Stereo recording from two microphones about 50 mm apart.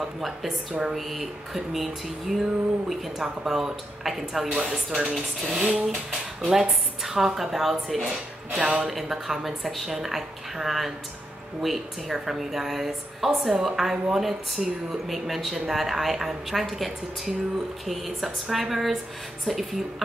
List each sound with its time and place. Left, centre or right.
0.2 s a woman's voice: centre
4.6 s speech: centre
5.1 s a woman's voice: centre
5.6 s a woman's voice: centre
8.5 s speech: right
8.8 s a woman's voice: centre